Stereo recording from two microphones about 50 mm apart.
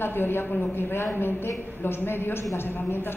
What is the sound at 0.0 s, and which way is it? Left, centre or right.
A man's voice, left.